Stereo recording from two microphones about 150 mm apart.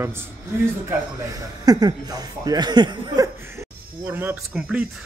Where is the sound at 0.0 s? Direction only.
15° right (ahead or behind).